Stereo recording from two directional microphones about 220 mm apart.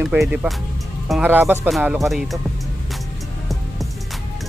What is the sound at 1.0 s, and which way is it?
Speech, 5° right (ahead or behind).